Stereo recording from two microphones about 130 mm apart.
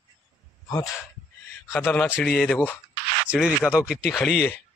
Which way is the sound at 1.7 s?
15° left (ahead or behind).